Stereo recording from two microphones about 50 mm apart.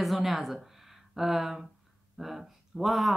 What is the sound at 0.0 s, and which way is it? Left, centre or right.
Speech, centre.